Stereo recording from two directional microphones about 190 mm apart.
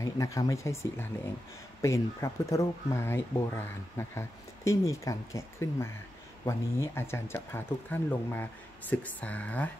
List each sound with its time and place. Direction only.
0.0 s speech: 15° left (ahead or behind)